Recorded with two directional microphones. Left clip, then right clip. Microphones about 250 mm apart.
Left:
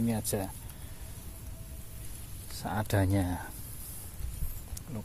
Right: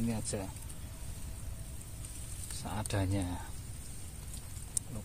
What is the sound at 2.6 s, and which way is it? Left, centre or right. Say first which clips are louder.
Speech: left 6 dB; left.